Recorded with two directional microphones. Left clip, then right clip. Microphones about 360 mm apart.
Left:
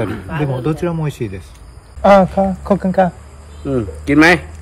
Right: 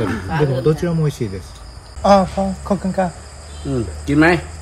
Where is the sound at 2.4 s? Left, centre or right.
Left.